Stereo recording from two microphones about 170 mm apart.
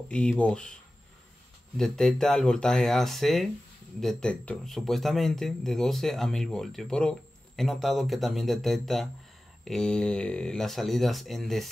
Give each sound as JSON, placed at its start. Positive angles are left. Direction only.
{"t": 0.1, "sound": "speech", "side_deg": 5}
{"t": 1.8, "sound": "speech", "side_deg": 5}